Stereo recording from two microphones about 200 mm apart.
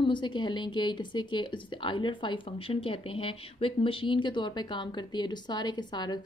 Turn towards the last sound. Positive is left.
turn(degrees=20)  # may be behind; listen again after turning